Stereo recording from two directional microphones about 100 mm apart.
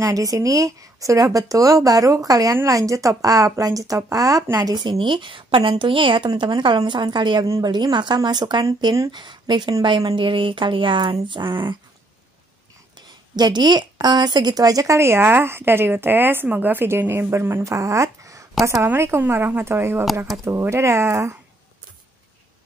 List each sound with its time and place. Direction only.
0.0 s a woman's voice: 35° right (ahead or behind)
4.8 s a woman's voice: 55° right (ahead or behind)
7.4 s a woman's voice: 35° right (ahead or behind)
7.7 s a woman's voice: 50° right (ahead or behind)
13.4 s speech: 45° right (ahead or behind); by 21.4 s 25° right (ahead or behind)